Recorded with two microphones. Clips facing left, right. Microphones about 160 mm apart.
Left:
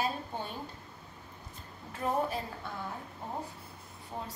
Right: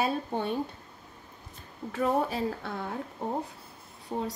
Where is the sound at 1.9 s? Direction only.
85° right.